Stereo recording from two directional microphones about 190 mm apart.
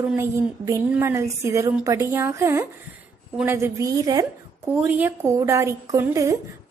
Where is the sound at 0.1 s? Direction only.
15° right (ahead or behind).